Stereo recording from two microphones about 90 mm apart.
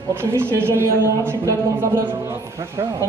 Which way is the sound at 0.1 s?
25° right (ahead or behind).